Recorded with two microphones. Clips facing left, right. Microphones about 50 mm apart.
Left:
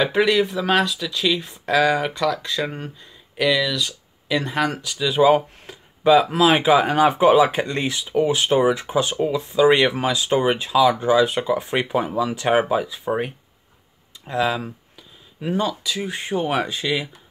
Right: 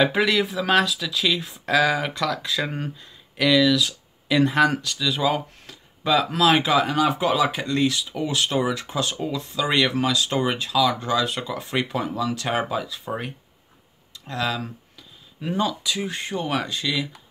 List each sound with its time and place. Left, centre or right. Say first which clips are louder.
0.0 s speech: left 2 dB; centre
4.9 s speech: left 7 dB; centre
16.2 s speech: left 4 dB; centre